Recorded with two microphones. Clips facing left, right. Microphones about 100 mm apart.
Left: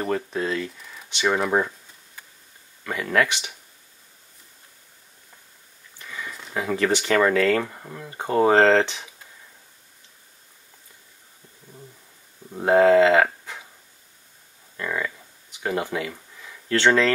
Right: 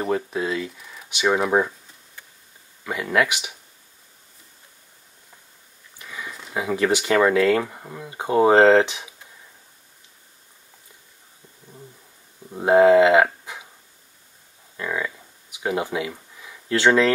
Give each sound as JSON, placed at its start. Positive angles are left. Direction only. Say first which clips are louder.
{"t": 0.0, "sound": "speech", "louder": "right 1 dB", "side_deg": -5}
{"t": 2.8, "sound": "speech", "louder": "right 1 dB", "side_deg": -10}
{"t": 5.9, "sound": "speech", "louder": "even", "side_deg": -10}
{"t": 12.5, "sound": "speech", "louder": "right 2 dB", "side_deg": -10}
{"t": 14.8, "sound": "a sound", "louder": "right 1 dB", "side_deg": -10}